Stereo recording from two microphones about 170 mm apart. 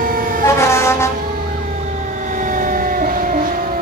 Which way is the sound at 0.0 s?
55° right (ahead or behind).